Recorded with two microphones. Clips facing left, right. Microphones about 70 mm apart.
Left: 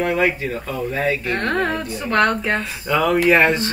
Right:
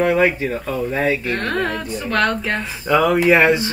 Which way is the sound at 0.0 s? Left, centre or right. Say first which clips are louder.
Right 3 dB; centre.